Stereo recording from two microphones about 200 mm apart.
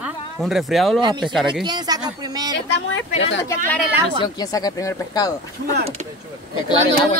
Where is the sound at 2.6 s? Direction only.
65° left (ahead or behind).